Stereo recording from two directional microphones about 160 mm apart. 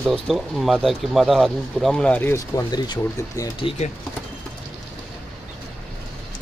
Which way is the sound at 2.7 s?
25° left (ahead or behind).